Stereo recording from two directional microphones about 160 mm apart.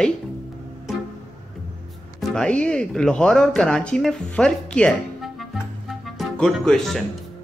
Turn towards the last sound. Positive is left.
turn(degrees=0)  # may be behind; listen again after turning